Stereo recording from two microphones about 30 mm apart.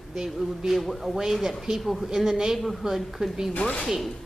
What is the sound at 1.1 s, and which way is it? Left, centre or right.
Speech, centre.